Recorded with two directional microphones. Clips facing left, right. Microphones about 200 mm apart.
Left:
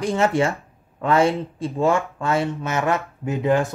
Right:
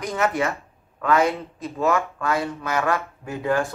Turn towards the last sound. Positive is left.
turn(degrees=20)  # may be behind; listen again after turning